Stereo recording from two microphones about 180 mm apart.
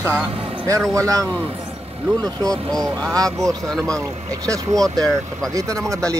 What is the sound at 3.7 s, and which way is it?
Speech, centre (ahead or behind).